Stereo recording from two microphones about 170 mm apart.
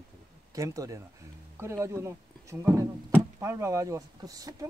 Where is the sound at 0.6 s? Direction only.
20° right (ahead or behind).